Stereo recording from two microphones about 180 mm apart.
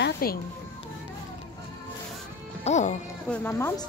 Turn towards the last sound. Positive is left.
turn(degrees=15)  # may be behind; listen again after turning